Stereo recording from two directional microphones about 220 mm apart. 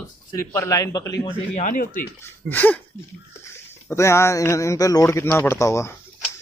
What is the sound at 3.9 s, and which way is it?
A man's voice, 10° left (ahead or behind).